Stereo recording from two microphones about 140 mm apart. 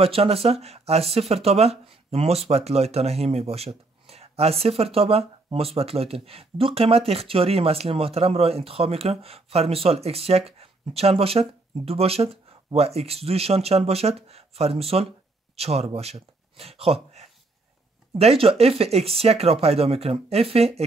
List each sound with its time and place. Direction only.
0.0 s speech: 45° right (ahead or behind)